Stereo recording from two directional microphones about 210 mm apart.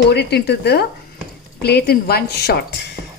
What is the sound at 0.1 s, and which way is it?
A woman's voice, 50° left (ahead or behind).